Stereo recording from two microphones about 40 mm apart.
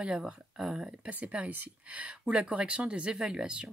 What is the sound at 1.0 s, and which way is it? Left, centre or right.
Speech, right.